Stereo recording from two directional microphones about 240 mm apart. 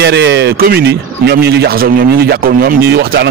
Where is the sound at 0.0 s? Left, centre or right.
Right.